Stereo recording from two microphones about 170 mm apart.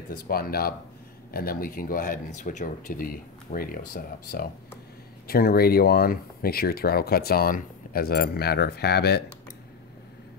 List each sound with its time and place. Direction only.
0.3 s speech: 60° left (ahead or behind)